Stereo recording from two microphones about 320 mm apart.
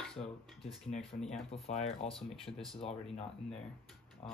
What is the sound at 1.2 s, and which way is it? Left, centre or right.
Speech, centre.